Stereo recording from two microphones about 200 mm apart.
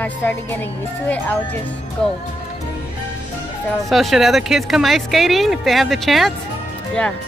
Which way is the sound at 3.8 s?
Centre (ahead or behind).